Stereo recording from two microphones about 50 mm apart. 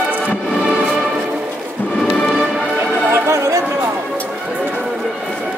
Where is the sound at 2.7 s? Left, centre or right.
Right.